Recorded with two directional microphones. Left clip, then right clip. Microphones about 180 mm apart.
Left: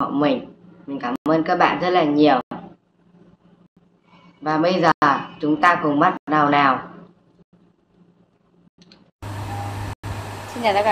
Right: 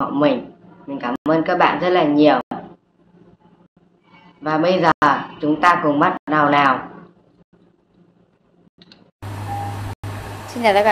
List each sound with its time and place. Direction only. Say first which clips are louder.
0.0 s a woman's voice: right 2 dB; centre (ahead or behind)
4.4 s a woman's voice: right 2 dB; centre (ahead or behind)
10.6 s speech: right 4 dB; 30° right (ahead or behind)